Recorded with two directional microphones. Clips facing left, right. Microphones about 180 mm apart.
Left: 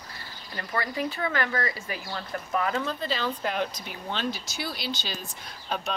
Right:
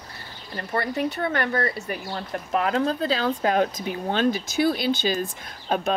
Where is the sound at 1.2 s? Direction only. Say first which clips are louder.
Right 3 dB; 35° right (ahead or behind).